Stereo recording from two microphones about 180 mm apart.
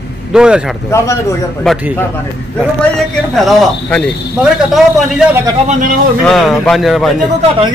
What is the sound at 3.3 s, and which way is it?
Speech, 5° left (ahead or behind).